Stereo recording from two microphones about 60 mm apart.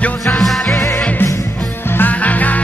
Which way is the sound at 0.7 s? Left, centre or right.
Left.